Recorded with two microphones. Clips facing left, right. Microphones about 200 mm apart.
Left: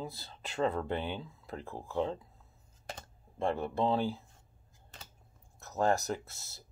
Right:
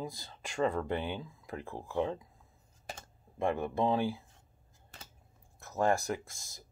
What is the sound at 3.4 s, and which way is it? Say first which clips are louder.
Speech: right 1 dB; 15° right (ahead or behind).